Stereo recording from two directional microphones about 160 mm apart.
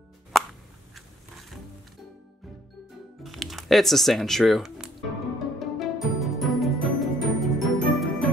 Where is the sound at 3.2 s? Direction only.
Centre (ahead or behind).